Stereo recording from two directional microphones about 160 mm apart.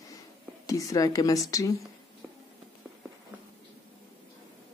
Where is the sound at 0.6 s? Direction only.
20° left (ahead or behind).